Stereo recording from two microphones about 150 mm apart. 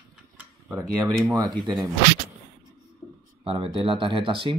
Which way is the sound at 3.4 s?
35° right (ahead or behind).